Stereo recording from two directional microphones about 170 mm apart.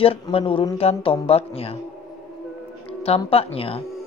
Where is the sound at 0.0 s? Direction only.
35° left (ahead or behind).